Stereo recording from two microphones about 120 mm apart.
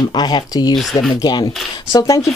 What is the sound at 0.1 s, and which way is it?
A woman's voice, 35° left (ahead or behind).